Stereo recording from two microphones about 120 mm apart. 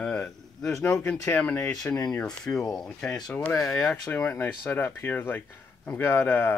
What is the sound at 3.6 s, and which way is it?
Speech, 30° left (ahead or behind).